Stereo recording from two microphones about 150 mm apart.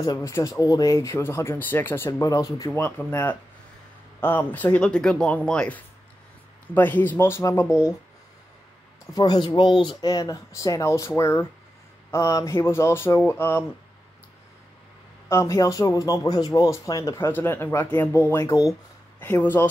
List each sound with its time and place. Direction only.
0.0 s a man's voice: 20° left (ahead or behind)
9.1 s a man's voice: 25° left (ahead or behind)
15.2 s a man's voice: 20° left (ahead or behind)